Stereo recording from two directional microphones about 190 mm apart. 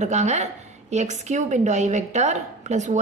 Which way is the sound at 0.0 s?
35° right (ahead or behind).